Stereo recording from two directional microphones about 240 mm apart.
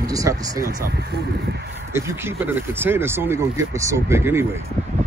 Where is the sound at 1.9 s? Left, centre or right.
Centre.